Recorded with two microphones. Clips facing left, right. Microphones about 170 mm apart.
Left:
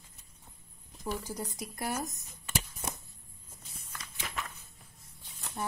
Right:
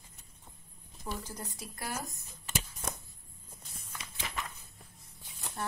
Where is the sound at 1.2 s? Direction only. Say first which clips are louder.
Left 5 dB; 15° left (ahead or behind).